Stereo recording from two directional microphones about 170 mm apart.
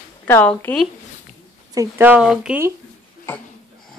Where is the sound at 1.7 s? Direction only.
15° right (ahead or behind).